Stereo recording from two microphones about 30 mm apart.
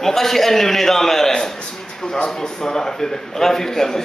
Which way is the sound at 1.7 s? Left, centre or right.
Centre.